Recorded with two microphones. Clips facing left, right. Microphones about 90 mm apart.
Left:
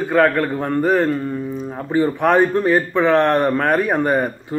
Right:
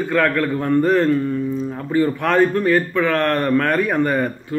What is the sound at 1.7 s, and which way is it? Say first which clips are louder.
Speech: left 2 dB; 20° left (ahead or behind).